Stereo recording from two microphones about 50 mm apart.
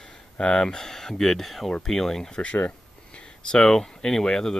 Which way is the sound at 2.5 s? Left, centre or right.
Left.